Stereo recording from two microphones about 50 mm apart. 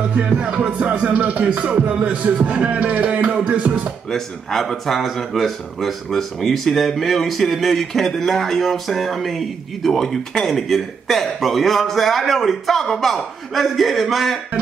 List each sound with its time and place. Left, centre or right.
0.3 s music: centre
4.1 s speech: centre